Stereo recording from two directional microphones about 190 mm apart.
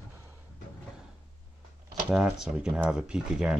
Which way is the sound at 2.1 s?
5° right (ahead or behind).